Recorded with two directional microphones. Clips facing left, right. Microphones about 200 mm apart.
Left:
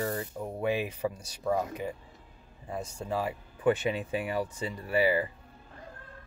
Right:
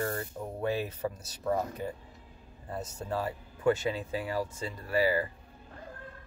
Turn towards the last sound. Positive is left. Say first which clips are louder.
# left 1 dB
turn(degrees=15)  # may be behind; listen again after turning